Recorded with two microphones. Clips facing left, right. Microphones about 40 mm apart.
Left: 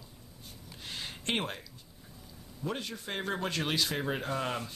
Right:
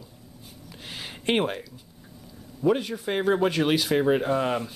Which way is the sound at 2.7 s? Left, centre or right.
Centre.